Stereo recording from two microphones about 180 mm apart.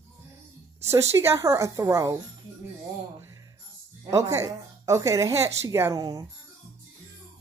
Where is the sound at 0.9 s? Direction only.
15° right (ahead or behind).